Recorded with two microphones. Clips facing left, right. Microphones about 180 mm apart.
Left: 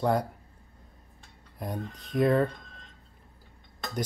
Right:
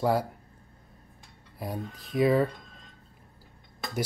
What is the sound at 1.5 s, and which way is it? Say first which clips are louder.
Speech: even; 5° right (ahead or behind).